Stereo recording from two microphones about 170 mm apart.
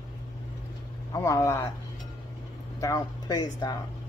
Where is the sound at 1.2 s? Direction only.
15° left (ahead or behind).